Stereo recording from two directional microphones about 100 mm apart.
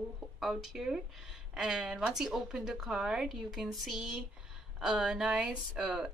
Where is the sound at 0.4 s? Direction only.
5° right (ahead or behind).